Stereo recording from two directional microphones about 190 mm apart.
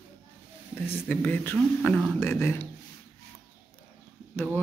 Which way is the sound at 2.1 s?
15° left (ahead or behind).